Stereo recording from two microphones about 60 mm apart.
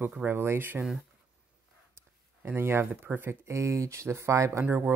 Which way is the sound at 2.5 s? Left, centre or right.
Right.